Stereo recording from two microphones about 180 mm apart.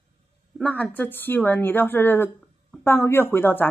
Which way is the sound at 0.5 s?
5° left (ahead or behind).